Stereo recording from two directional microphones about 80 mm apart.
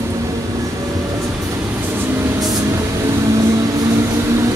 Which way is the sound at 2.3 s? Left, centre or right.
Right.